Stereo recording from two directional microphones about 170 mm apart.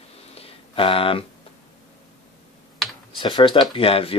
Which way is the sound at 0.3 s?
35° left (ahead or behind).